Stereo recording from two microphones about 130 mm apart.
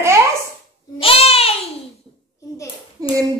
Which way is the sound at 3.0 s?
30° right (ahead or behind).